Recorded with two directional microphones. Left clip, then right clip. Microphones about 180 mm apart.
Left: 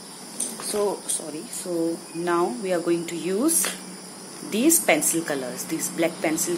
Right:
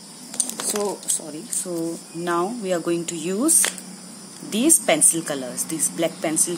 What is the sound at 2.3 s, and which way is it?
A woman's voice, 35° right (ahead or behind).